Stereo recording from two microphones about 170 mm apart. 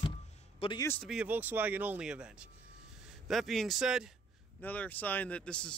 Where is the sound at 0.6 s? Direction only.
30° left (ahead or behind).